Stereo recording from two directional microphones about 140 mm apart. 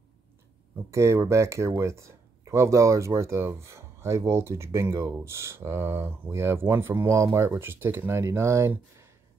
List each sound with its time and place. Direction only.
0.8 s speech: 20° right (ahead or behind)